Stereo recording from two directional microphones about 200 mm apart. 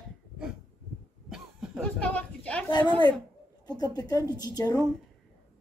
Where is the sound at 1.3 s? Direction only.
Centre (ahead or behind).